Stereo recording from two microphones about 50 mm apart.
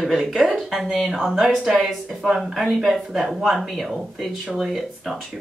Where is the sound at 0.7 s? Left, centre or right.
Centre.